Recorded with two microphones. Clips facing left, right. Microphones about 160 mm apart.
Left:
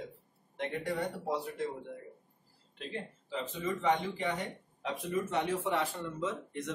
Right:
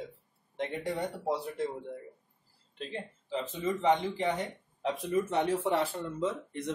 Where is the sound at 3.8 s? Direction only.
25° right (ahead or behind).